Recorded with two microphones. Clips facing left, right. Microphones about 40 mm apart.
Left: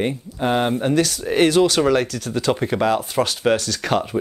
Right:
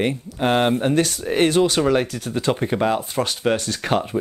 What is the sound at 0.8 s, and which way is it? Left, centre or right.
Speech, right.